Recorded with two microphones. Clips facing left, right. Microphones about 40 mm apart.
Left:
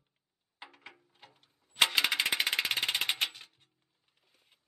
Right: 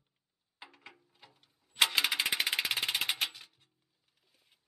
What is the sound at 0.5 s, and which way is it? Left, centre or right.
Music, centre.